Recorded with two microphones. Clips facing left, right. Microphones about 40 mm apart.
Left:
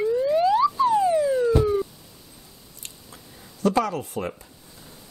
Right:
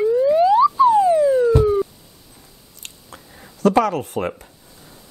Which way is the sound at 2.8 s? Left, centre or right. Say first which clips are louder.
Right 4 dB; right.